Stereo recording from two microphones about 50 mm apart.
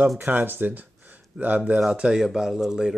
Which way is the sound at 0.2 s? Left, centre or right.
Right.